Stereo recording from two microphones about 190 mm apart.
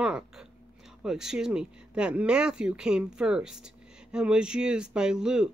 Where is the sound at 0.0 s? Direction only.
5° right (ahead or behind).